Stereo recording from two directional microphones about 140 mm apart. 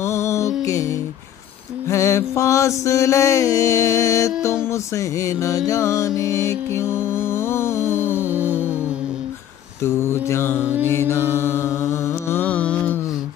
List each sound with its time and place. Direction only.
0.0 s music: 20° left (ahead or behind)
1.9 s mantra: 20° left (ahead or behind)
8.3 s music: 10° right (ahead or behind)
9.8 s mantra: 20° left (ahead or behind)
10.6 s music: 10° right (ahead or behind)
10.9 s mantra: 15° left (ahead or behind)